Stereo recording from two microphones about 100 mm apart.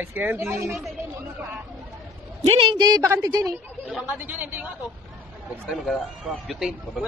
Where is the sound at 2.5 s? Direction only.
55° right (ahead or behind).